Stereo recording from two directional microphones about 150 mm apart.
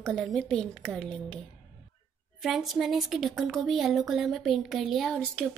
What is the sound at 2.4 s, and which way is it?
Speech, centre (ahead or behind).